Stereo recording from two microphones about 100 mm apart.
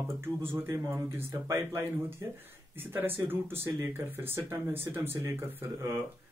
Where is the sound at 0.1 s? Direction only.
25° right (ahead or behind).